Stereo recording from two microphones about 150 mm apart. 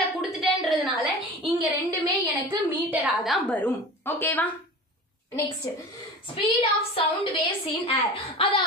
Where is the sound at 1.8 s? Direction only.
25° right (ahead or behind).